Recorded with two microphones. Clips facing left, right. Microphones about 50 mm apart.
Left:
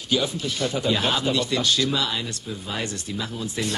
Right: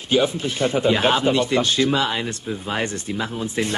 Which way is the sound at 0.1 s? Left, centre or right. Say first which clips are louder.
Right 5 dB; right.